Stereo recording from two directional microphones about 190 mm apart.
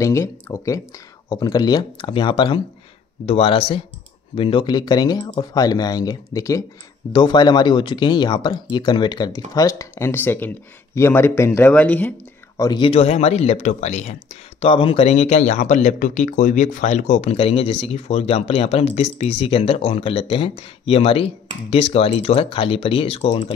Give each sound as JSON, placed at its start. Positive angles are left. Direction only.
{"t": 0.0, "sound": "speech", "side_deg": 15}
{"t": 12.5, "sound": "speech", "side_deg": 20}